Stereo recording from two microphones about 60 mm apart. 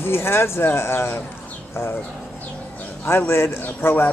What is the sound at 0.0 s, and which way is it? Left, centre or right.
Speech, left.